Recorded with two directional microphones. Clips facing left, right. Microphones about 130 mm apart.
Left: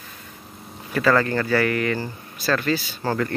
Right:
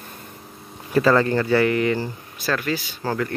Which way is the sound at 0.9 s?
25° right (ahead or behind).